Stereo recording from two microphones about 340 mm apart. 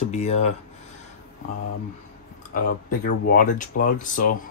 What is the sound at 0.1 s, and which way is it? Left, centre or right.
Speech, centre.